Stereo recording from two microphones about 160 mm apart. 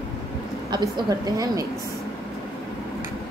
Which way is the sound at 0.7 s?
25° right (ahead or behind).